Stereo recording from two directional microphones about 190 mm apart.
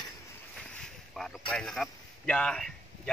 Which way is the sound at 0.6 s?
5° left (ahead or behind).